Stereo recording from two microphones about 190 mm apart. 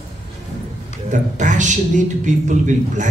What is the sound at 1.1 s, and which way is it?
A man's voice, 40° right (ahead or behind).